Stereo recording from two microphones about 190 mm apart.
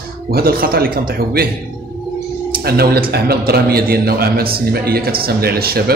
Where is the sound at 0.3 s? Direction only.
50° right (ahead or behind).